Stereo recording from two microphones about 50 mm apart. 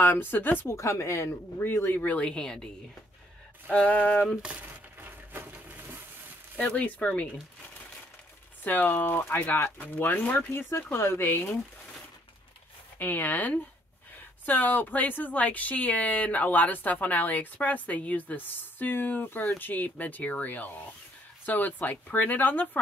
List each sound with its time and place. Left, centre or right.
0.0 s a woman's voice: left
0.7 s speech: left
1.6 s speech: left
2.1 s speech: centre
3.7 s speech: left
4.4 s speech: right
5.0 s a sound: right
6.6 s speech: left
8.6 s a woman's voice: left
8.9 s speech: left
9.8 s a woman's voice: left
11.0 s speech: left
13.0 s a woman's voice: left